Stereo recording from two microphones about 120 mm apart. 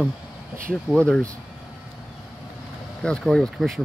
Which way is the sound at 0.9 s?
10° left (ahead or behind).